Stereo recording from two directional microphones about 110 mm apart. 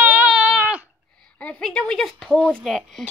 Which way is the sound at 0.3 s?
5° right (ahead or behind).